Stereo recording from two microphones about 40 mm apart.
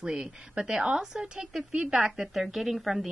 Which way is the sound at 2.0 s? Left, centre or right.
Centre.